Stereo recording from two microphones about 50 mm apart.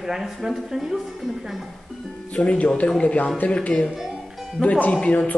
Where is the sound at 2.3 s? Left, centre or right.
Left.